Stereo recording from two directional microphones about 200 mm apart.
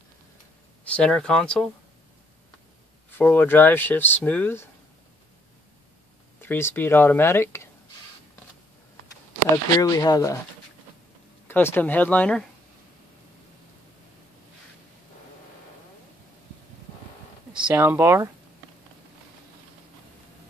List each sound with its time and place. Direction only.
0.8 s speech: 5° left (ahead or behind)
3.1 s speech: 10° left (ahead or behind)
6.4 s speech: 10° left (ahead or behind)
9.8 s speech: 15° left (ahead or behind)
11.4 s speech: 10° left (ahead or behind)
17.5 s speech: 5° right (ahead or behind)